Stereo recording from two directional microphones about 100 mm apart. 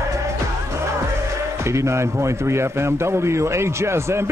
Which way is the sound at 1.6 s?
30° right (ahead or behind).